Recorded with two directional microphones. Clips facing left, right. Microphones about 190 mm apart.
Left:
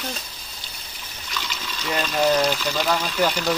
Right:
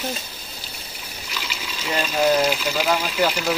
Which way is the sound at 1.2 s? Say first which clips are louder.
Left 1 dB; 10° right (ahead or behind).